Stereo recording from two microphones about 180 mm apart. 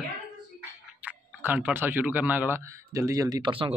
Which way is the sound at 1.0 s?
10° right (ahead or behind).